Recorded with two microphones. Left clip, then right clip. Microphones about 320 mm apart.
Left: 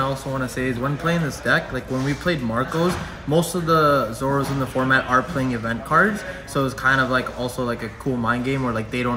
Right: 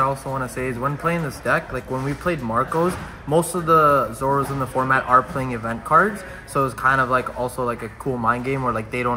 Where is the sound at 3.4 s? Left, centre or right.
Centre.